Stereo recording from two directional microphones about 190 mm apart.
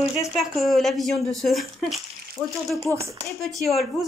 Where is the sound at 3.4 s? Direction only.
Centre (ahead or behind).